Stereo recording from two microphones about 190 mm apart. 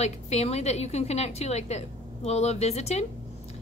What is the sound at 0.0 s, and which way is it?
A woman's voice, 35° left (ahead or behind).